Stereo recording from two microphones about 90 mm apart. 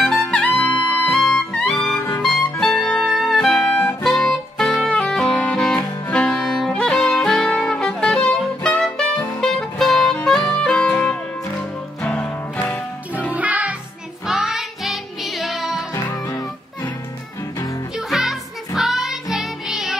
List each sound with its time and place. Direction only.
0.0 s music: 10° left (ahead or behind)
2.0 s music: 20° left (ahead or behind)
8.8 s saxophone: 10° left (ahead or behind)
12.0 s music: 15° left (ahead or behind)
13.3 s music: 15° right (ahead or behind)
14.2 s music: 5° right (ahead or behind)
15.9 s music: 40° left (ahead or behind)
17.9 s music: 5° right (ahead or behind)